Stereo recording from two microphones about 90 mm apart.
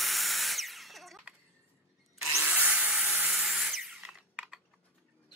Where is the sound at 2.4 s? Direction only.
15° right (ahead or behind).